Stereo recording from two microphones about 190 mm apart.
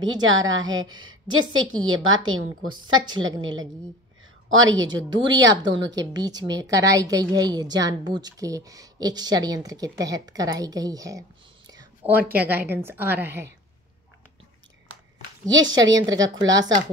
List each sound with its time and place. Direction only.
0.0 s a woman's voice: 90° right
5.1 s a woman's voice: 20° right (ahead or behind)
12.0 s a woman's voice: 10° right (ahead or behind)
15.7 s a woman's voice: 20° right (ahead or behind)